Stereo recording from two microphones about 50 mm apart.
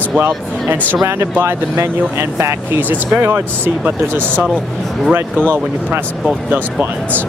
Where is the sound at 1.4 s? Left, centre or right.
Right.